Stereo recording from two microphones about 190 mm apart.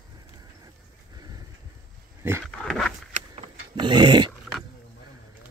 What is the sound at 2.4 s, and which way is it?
Dog, centre (ahead or behind).